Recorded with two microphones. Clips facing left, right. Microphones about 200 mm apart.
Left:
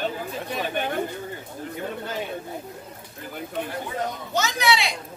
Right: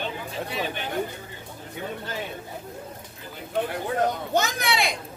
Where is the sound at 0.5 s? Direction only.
50° left (ahead or behind).